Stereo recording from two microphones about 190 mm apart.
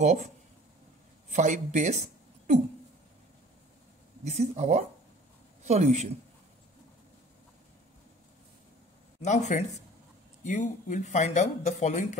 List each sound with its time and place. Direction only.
0.0 s speech: 40° right (ahead or behind)
1.3 s a woman's voice: 40° right (ahead or behind)
4.2 s speech: 35° right (ahead or behind)
9.2 s speech: 40° left (ahead or behind)